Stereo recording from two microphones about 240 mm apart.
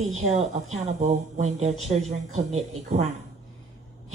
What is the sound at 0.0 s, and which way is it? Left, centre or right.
A woman's voice, right.